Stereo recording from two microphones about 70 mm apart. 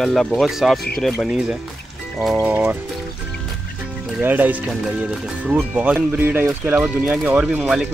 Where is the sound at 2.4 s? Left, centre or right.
Right.